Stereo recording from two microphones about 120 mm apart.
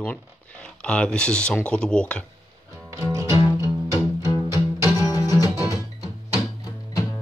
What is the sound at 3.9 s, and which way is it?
Music, 30° left (ahead or behind).